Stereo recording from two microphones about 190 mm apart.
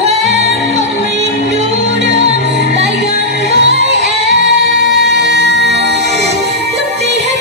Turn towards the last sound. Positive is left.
turn(degrees=-65)  # may be behind; listen again after turning